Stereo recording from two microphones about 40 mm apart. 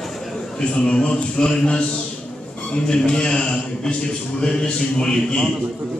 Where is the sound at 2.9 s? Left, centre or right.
Left.